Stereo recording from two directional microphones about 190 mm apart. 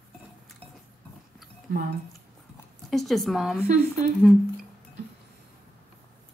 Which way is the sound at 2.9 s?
Centre (ahead or behind).